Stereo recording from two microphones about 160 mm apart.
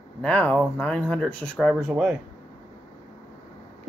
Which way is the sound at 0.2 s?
10° left (ahead or behind).